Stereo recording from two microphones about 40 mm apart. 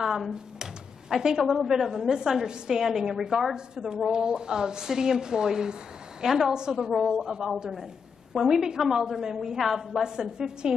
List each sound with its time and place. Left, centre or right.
0.0 s a woman's voice: centre
3.5 s a woman's voice: centre
6.9 s a woman's voice: centre